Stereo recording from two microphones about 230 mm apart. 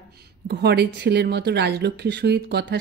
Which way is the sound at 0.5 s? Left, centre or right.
Right.